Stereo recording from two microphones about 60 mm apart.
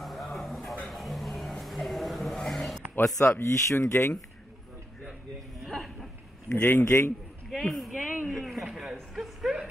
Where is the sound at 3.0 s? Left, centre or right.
Left.